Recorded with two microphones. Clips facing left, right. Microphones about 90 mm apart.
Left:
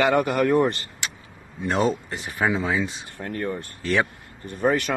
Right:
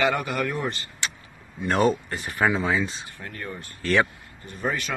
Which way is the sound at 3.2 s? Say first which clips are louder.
Left 10 dB; 40° left (ahead or behind).